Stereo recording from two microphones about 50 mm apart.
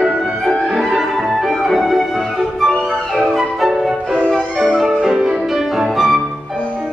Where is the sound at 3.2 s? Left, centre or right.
Centre.